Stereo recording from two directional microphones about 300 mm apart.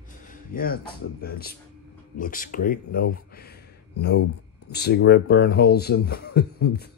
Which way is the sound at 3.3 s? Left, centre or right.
Left.